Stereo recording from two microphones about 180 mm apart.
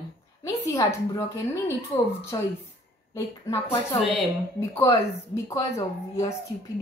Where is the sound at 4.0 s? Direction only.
Centre (ahead or behind).